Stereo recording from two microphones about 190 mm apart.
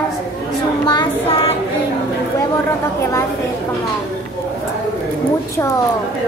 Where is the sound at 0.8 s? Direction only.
20° left (ahead or behind).